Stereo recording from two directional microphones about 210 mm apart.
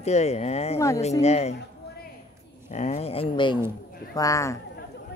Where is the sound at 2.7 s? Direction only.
35° left (ahead or behind).